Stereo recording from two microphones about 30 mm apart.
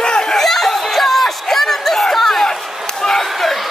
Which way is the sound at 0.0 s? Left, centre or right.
Left.